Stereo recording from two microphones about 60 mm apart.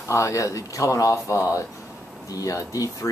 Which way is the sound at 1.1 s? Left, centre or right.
Left.